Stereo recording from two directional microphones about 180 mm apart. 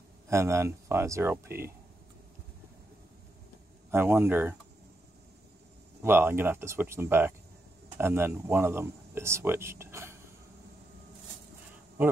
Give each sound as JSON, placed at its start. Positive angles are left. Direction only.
{"t": 0.3, "sound": "speech", "side_deg": -15}
{"t": 3.9, "sound": "speech", "side_deg": -10}
{"t": 6.0, "sound": "speech", "side_deg": -10}